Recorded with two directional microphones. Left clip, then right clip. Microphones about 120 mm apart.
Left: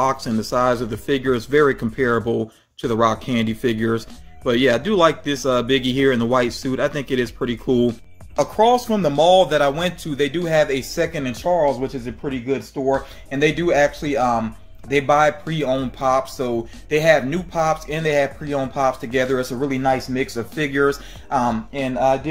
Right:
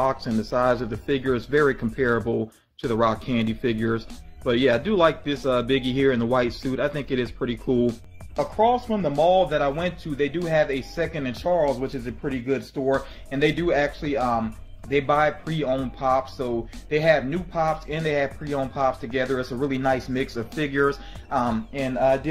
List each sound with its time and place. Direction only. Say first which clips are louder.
0.0 s speech: left 4 dB; 10° left (ahead or behind)
8.4 s speech: left 5 dB; 30° left (ahead or behind); by 12.2 s 5° right (ahead or behind)
12.2 s speech: left 3 dB; 20° right (ahead or behind)
12.9 s speech: left 3 dB; centre (ahead or behind)
19.6 s speech: left 2 dB; 10° right (ahead or behind)